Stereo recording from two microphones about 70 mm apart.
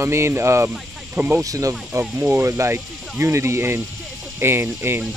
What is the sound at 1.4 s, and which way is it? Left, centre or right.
Speech, right.